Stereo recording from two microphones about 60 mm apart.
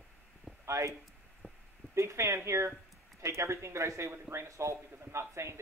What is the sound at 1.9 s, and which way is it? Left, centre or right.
Speech, right.